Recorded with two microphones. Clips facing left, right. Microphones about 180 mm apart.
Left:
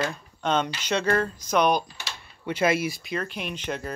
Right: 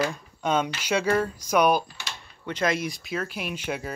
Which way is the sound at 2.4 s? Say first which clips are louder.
Left 3 dB; 10° left (ahead or behind).